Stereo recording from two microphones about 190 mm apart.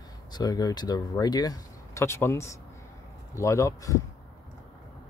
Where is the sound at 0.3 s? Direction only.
20° left (ahead or behind).